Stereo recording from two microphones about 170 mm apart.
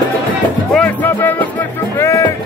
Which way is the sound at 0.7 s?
10° left (ahead or behind).